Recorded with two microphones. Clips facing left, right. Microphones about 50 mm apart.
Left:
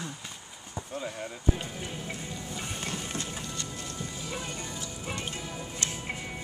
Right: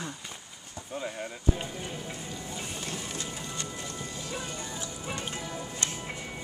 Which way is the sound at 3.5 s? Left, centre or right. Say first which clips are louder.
Right 1 dB; centre.